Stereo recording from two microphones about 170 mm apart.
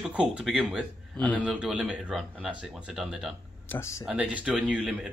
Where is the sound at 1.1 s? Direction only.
10° left (ahead or behind).